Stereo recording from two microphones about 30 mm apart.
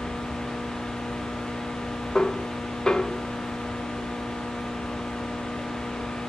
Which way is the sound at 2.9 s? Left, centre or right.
Left.